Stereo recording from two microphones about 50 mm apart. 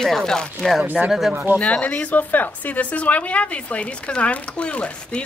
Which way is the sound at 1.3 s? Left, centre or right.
Right.